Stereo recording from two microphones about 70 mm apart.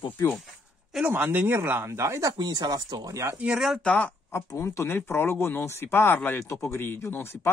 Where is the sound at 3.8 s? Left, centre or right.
Left.